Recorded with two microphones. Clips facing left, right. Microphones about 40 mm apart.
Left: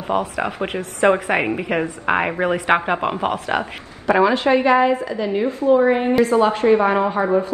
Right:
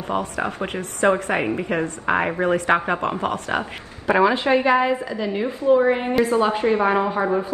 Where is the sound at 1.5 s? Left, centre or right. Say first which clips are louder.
Left 2 dB; centre.